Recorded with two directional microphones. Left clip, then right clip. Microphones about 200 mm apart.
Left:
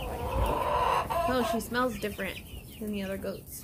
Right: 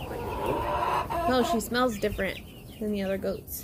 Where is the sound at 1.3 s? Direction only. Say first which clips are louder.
Right 3 dB; 30° right (ahead or behind).